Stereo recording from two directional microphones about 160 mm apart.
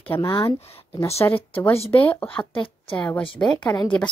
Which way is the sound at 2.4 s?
30° left (ahead or behind).